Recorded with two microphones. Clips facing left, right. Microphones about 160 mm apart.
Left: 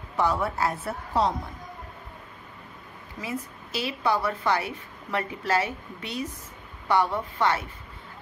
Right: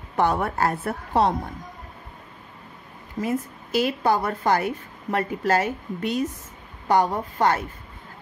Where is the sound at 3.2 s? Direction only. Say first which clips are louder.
Right 7 dB; 50° right (ahead or behind).